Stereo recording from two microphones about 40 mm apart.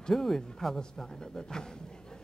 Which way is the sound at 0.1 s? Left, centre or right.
Centre.